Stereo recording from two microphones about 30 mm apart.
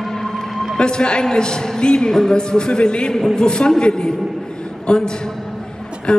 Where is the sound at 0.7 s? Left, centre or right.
Left.